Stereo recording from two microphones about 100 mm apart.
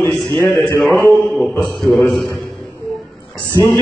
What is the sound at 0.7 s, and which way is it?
A man's voice, centre (ahead or behind).